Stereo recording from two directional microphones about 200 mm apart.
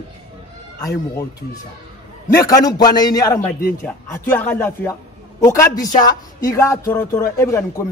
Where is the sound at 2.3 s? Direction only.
15° left (ahead or behind).